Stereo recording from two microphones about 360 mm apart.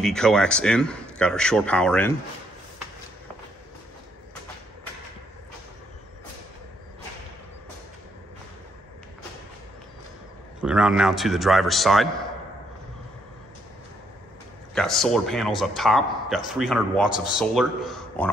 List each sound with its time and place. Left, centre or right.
0.0 s a man's voice: centre
10.6 s a man's voice: centre
14.7 s a man's voice: centre